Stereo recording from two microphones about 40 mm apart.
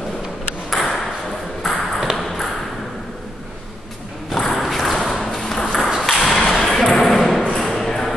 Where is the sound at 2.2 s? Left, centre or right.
Centre.